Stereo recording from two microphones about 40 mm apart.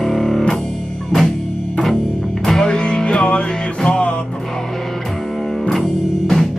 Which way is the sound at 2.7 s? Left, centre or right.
Left.